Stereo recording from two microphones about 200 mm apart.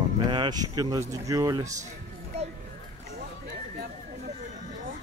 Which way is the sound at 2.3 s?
30° right (ahead or behind).